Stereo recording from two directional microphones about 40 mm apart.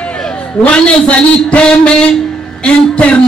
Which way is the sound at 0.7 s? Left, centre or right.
Left.